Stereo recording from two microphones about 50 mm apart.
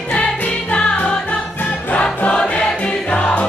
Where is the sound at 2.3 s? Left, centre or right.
Centre.